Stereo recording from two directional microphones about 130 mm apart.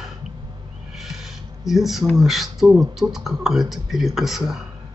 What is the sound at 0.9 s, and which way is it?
Speech, 5° right (ahead or behind).